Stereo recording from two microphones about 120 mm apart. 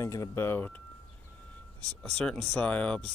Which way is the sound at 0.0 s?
25° left (ahead or behind).